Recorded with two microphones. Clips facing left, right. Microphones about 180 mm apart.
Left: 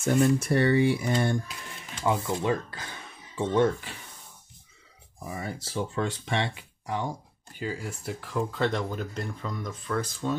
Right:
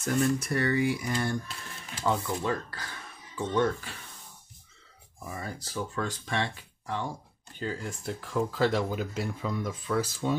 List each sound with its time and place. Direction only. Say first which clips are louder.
0.0 s speech: left 4 dB; 30° left (ahead or behind)
2.1 s speech: left 3 dB; 15° left (ahead or behind); by 3.7 s 30° left (ahead or behind)
5.3 s speech: left 3 dB; 20° left (ahead or behind); by 10.3 s 5° right (ahead or behind)